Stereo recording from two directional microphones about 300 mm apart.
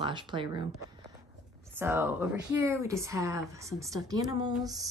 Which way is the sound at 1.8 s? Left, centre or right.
Centre.